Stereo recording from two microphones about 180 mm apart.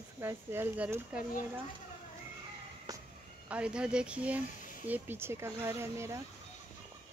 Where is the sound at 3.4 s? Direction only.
5° right (ahead or behind).